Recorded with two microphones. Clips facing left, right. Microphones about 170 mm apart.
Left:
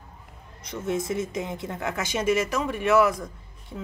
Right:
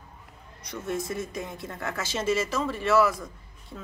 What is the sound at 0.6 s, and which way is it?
Speech, 20° left (ahead or behind).